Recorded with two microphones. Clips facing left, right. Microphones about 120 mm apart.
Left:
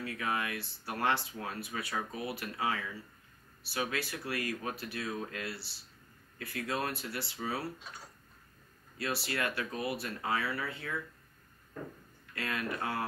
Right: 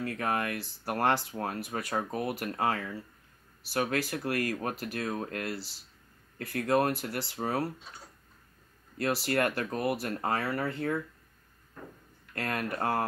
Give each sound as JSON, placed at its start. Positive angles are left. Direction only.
{"t": 0.0, "sound": "speech", "side_deg": -50}
{"t": 8.9, "sound": "speech", "side_deg": -50}
{"t": 12.4, "sound": "speech", "side_deg": -50}